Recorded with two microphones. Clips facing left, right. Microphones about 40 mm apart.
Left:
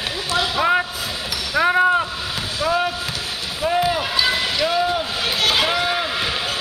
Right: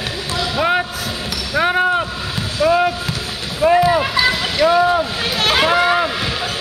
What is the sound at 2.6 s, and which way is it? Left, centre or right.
Basketball bounce, right.